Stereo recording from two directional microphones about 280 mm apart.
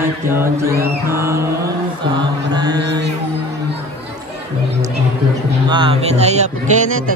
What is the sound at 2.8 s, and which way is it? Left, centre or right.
Music, right.